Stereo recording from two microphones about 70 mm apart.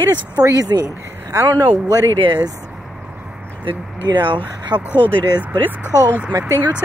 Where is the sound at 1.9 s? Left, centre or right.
Right.